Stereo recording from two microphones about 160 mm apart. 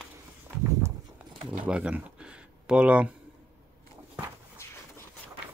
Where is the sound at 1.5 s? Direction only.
5° right (ahead or behind).